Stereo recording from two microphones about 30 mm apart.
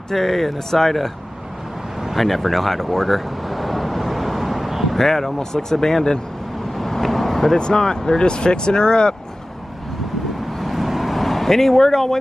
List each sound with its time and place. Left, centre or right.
0.1 s speech: centre
2.1 s a sound: centre
4.9 s speech: centre
6.7 s vehicle: centre
7.5 s speech: left
7.8 s speech: centre
8.2 s speech: left
10.6 s vehicle: centre